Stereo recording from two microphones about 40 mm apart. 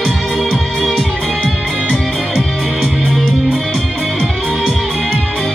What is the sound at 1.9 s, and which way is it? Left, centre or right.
Music, centre.